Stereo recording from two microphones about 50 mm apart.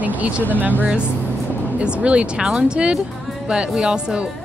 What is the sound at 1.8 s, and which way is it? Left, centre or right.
Speech, right.